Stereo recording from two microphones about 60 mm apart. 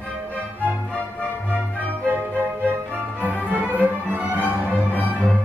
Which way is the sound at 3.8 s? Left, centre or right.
Right.